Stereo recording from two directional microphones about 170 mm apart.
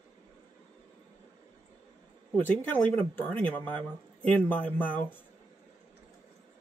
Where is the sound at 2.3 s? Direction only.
10° left (ahead or behind).